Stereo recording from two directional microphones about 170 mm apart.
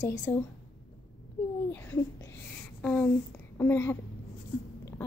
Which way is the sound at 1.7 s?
15° left (ahead or behind).